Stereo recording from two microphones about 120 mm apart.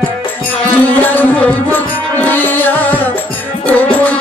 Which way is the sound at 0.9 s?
15° left (ahead or behind).